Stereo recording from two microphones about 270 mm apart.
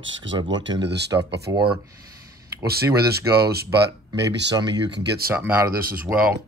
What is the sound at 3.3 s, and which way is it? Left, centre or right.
Speech, centre.